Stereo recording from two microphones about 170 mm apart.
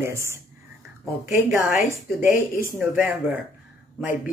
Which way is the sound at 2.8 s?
10° right (ahead or behind).